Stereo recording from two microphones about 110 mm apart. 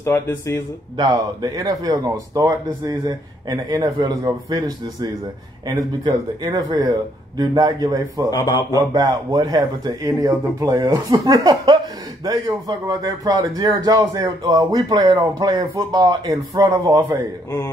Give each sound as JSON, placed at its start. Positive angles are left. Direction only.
{"t": 0.0, "sound": "speech", "side_deg": 25}
{"t": 0.9, "sound": "a man's voice", "side_deg": -35}
{"t": 8.3, "sound": "speech", "side_deg": 35}
{"t": 8.7, "sound": "a man's voice", "side_deg": -35}